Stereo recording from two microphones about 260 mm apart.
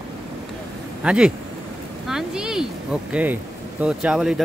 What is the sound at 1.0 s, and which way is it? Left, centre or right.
Speech, centre.